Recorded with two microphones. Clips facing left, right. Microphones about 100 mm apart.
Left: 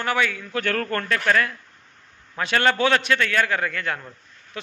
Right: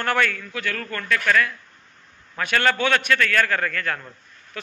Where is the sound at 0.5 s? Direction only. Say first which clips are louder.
Left 5 dB; 55° left (ahead or behind).